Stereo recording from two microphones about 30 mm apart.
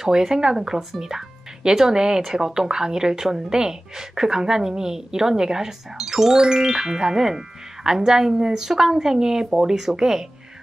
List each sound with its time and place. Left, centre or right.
0.0 s speech: centre